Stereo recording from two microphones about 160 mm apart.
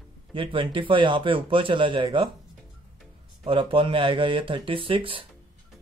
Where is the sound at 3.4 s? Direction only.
35° right (ahead or behind).